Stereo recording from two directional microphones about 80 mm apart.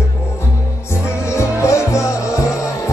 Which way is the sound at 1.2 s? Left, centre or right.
Left.